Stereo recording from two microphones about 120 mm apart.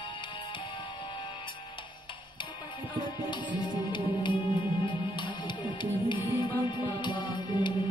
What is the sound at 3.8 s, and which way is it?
Music, 40° left (ahead or behind).